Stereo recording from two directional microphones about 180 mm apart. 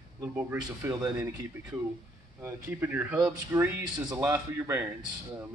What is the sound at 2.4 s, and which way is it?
Speech, 10° right (ahead or behind).